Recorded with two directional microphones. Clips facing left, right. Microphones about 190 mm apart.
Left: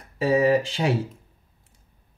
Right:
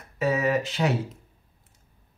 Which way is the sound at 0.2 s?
30° left (ahead or behind).